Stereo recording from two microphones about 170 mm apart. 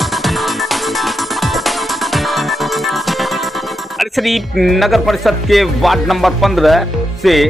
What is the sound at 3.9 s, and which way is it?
Speech, centre (ahead or behind).